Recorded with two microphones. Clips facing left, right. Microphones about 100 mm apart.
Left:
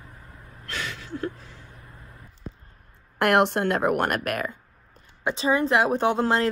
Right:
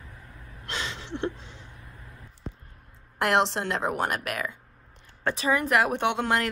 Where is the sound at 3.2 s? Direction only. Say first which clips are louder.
Left 4 dB; 55° left (ahead or behind).